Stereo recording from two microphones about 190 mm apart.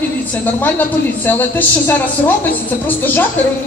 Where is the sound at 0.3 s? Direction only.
10° left (ahead or behind).